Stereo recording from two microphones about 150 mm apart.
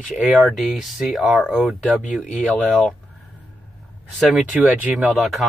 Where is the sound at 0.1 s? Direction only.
5° right (ahead or behind).